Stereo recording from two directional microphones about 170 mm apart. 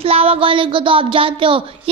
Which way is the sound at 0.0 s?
35° right (ahead or behind).